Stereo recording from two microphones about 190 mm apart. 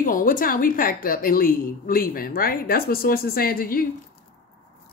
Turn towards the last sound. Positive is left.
turn(degrees=50)  # may be behind; listen again after turning